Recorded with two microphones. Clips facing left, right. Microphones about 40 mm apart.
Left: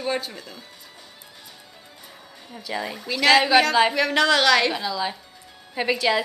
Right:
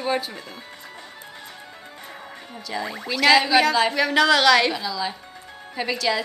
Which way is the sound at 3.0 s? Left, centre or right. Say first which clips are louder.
Even; centre.